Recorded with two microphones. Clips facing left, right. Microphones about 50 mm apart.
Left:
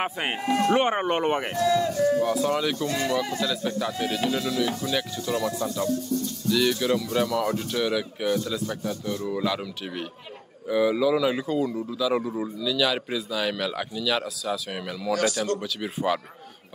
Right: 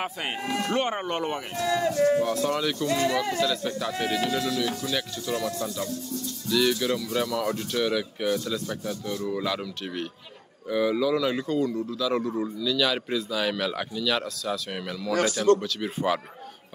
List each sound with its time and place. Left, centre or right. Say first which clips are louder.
0.0 s speech: left 3 dB; left
1.3 s speech: left 6 dB; left
1.6 s speech: even; right
2.2 s speech: left 2 dB; centre
3.1 s speech: even; right
3.3 s a man's voice: even; centre
15.2 s speech: right 6 dB; left
15.6 s a man's voice: even; centre